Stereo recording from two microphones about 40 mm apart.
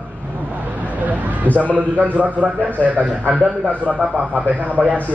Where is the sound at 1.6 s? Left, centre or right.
Right.